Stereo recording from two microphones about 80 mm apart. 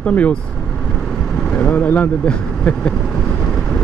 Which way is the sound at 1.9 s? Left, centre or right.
Centre.